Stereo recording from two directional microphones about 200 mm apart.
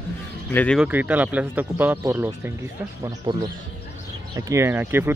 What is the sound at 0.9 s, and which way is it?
Speech, 10° right (ahead or behind).